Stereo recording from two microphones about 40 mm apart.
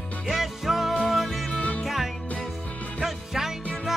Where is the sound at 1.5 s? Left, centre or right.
Left.